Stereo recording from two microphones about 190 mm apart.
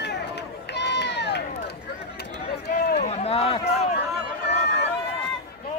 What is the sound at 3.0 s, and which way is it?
Run, 35° left (ahead or behind).